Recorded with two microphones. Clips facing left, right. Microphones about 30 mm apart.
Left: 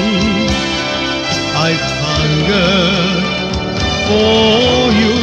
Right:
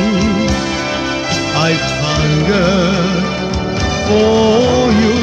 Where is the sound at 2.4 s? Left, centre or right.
Left.